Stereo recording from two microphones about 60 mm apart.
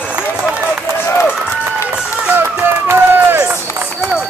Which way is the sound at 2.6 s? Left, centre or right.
Right.